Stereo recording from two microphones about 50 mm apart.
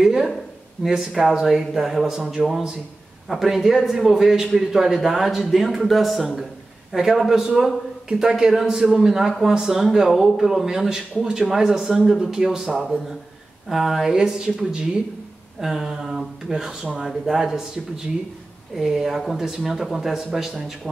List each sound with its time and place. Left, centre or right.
0.0 s a sound: centre
0.8 s a man's voice: centre
17.1 s speech: centre